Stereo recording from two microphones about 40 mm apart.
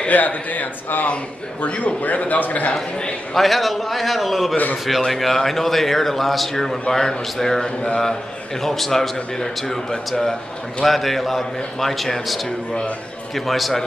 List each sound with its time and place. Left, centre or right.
0.1 s a man's voice: left
3.3 s a man's voice: centre
7.6 s speech: left
8.6 s a man's voice: centre